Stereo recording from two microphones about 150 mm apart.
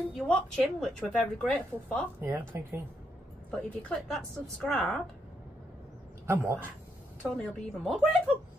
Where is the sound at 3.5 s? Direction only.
5° left (ahead or behind).